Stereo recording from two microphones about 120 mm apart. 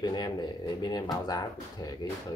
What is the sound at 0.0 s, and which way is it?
Speech, 35° left (ahead or behind).